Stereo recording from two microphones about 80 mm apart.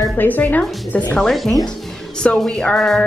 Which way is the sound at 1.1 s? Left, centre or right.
Centre.